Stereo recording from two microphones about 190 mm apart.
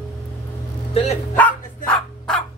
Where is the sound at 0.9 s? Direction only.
35° left (ahead or behind).